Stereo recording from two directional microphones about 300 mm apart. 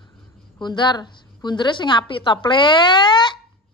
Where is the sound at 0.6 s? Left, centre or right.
Centre.